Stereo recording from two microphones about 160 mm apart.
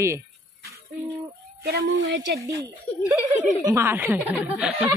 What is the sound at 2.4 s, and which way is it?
Speech, 20° right (ahead or behind).